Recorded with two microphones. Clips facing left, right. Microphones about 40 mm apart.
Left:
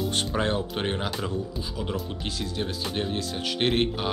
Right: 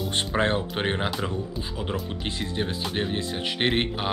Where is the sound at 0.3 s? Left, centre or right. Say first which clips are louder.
Right 2 dB; right.